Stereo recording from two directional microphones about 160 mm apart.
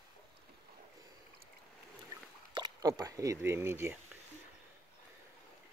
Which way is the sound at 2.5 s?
25° right (ahead or behind).